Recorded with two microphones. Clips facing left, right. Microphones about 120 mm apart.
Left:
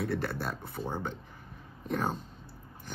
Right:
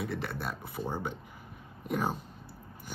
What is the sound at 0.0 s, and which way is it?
Speech, centre (ahead or behind).